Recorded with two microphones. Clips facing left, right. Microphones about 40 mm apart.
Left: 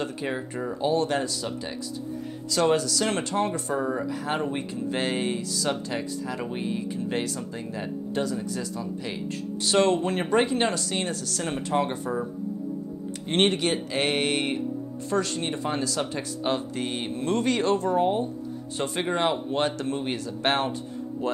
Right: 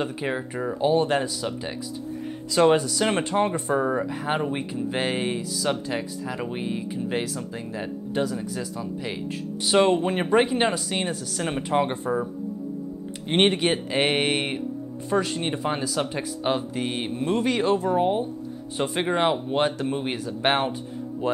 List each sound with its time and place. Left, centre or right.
0.0 s speech: centre
13.3 s speech: centre